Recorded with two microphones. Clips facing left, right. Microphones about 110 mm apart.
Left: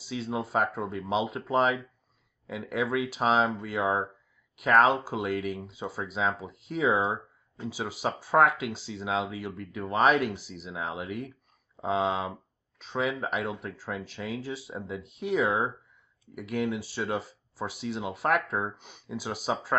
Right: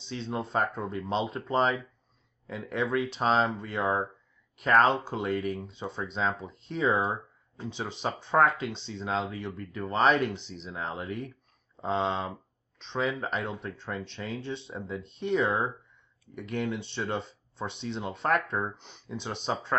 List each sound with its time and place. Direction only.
0.0 s speech: 5° left (ahead or behind)